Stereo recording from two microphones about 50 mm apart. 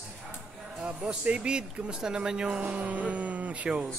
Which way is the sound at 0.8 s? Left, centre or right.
Right.